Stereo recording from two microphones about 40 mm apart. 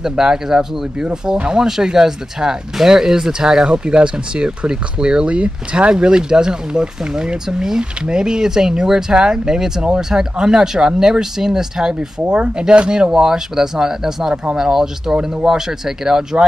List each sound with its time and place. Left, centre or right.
0.0 s speech: centre
3.7 s speech: right
12.2 s speech: right; by 14.3 s centre
14.3 s speech: right
14.6 s speech: centre